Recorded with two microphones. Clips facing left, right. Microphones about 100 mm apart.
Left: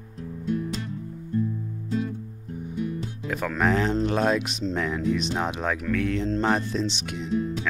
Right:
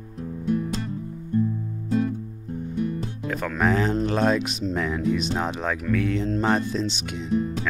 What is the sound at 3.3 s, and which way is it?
Speech, centre (ahead or behind).